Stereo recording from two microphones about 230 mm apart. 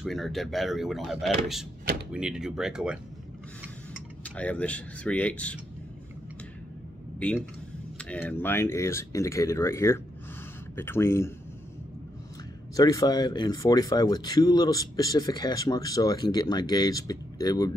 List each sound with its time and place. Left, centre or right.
0.0 s speech: centre
4.2 s speech: centre
7.2 s speech: centre
12.7 s speech: centre